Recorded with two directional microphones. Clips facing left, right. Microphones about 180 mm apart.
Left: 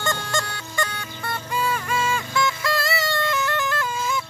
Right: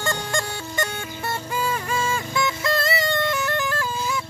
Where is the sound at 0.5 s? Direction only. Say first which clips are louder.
Right 2 dB; 25° right (ahead or behind).